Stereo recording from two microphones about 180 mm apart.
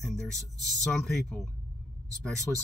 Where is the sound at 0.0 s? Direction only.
5° left (ahead or behind).